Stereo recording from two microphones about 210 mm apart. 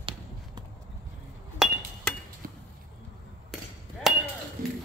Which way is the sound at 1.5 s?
Centre (ahead or behind).